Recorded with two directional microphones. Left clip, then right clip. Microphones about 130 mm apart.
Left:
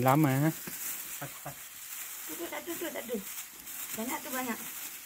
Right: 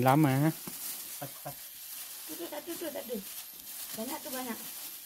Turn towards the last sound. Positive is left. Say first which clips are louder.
# left 3 dB
turn(degrees=-20)  # may be behind; listen again after turning